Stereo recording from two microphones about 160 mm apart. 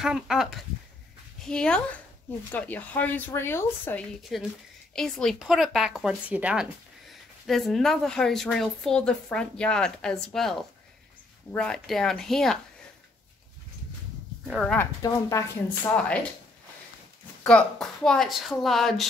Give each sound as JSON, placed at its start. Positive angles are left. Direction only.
{"t": 0.0, "sound": "speech", "side_deg": -5}
{"t": 4.3, "sound": "speech", "side_deg": 0}
{"t": 11.5, "sound": "speech", "side_deg": 5}
{"t": 14.5, "sound": "speech", "side_deg": 5}
{"t": 15.0, "sound": "speech", "side_deg": 20}
{"t": 17.4, "sound": "speech", "side_deg": 5}